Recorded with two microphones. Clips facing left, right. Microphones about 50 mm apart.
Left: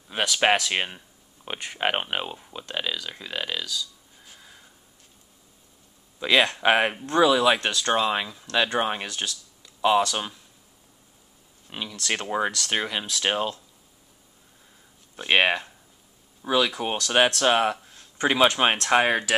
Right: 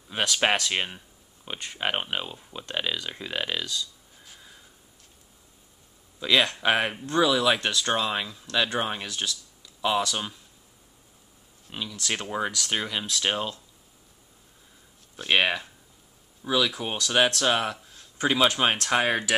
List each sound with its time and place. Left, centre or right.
0.1 s speech: centre
2.6 s speech: centre
4.2 s a sound: centre
6.1 s speech: centre
11.6 s speech: centre
15.1 s speech: centre